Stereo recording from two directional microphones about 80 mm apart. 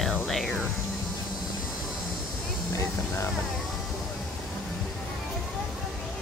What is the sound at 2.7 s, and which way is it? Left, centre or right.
Speech, left.